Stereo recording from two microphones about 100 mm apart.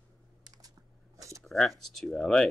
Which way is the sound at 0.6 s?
35° right (ahead or behind).